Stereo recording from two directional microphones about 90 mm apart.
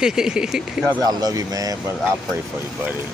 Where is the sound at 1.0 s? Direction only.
45° right (ahead or behind).